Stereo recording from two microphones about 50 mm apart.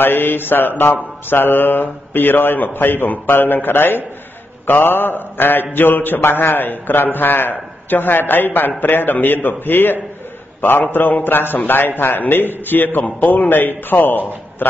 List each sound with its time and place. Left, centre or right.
0.0 s a man's voice: left